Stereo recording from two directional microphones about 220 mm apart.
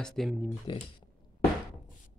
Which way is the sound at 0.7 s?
20° left (ahead or behind).